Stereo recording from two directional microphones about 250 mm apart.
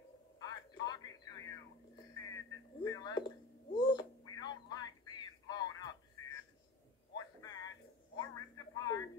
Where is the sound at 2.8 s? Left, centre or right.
Centre.